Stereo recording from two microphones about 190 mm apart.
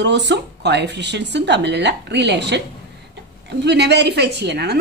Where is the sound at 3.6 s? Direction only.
65° right (ahead or behind).